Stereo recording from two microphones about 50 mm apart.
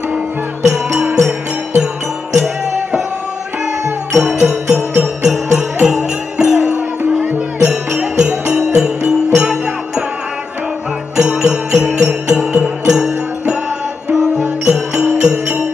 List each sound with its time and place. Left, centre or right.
0.6 s music: right
2.3 s music: centre
4.2 s music: centre
11.1 s music: centre